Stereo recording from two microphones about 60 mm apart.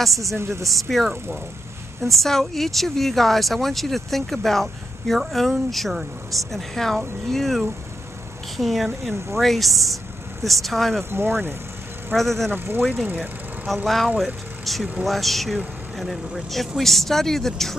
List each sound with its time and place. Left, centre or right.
0.2 s speech: right
0.7 s speech: centre
11.0 s speech: right
12.2 s speech: centre
12.4 s speech: right
13.8 s speech: centre